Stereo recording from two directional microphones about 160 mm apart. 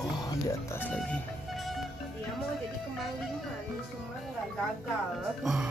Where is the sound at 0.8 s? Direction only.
10° left (ahead or behind).